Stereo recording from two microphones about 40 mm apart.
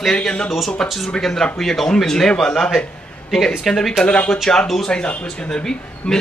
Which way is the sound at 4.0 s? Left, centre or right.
Left.